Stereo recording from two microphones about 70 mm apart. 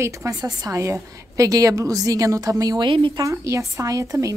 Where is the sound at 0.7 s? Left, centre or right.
Right.